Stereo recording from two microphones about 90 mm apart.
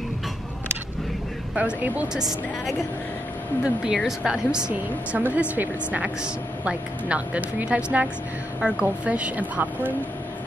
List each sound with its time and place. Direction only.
1.5 s a woman's voice: 15° right (ahead or behind)
2.1 s a woman's voice: 5° right (ahead or behind)